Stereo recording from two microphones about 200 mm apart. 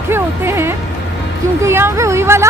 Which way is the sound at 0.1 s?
10° right (ahead or behind).